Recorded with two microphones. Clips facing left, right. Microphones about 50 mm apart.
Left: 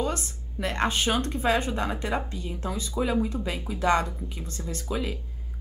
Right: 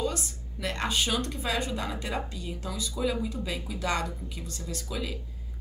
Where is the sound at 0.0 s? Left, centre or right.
Left.